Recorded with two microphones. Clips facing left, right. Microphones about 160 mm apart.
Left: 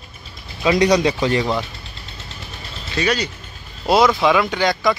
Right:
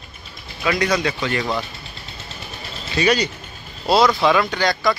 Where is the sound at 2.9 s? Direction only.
5° right (ahead or behind).